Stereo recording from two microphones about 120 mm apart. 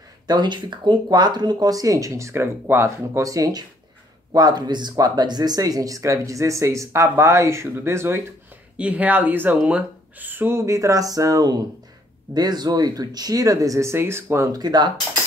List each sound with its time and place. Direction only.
0.3 s speech: 40° right (ahead or behind)